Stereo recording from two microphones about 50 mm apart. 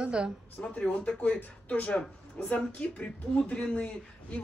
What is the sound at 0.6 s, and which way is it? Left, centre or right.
Speech, left.